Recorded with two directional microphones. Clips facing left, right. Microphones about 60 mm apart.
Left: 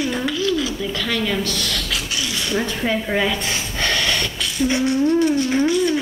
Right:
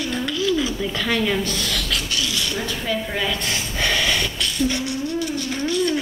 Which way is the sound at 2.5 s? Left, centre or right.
Left.